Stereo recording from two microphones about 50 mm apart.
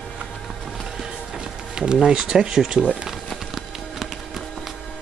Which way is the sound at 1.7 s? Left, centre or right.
Centre.